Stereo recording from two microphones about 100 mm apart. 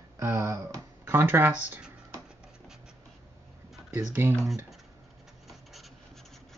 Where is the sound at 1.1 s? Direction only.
20° right (ahead or behind).